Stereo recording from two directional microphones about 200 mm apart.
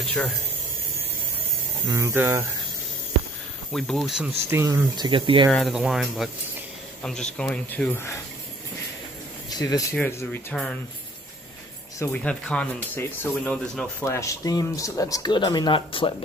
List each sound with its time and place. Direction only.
1.9 s speech: 15° right (ahead or behind)
3.7 s speech: centre (ahead or behind); by 5.5 s 25° right (ahead or behind)
5.5 s speech: centre (ahead or behind)
9.5 s speech: 20° left (ahead or behind)
12.0 s speech: 5° left (ahead or behind)
14.0 s speech: 15° left (ahead or behind)